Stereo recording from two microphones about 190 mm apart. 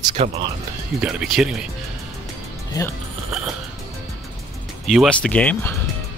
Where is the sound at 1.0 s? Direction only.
5° right (ahead or behind).